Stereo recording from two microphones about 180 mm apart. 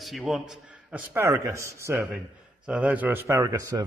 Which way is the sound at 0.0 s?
Centre (ahead or behind).